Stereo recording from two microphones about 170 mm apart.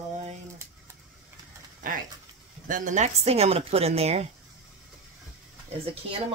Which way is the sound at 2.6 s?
50° right (ahead or behind).